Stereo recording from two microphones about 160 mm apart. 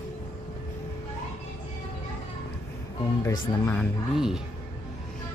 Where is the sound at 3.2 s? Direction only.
20° left (ahead or behind).